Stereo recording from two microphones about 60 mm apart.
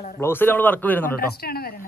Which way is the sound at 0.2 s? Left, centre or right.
Left.